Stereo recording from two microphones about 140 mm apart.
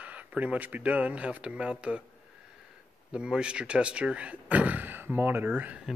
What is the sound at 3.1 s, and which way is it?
Speech, 5° right (ahead or behind).